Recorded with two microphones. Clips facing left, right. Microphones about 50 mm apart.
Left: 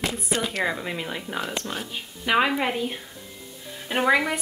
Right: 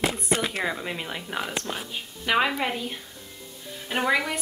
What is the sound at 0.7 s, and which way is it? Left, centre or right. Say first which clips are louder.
Speech: left 2 dB; centre.